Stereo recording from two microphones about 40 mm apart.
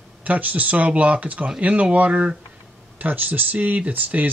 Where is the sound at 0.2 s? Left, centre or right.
Right.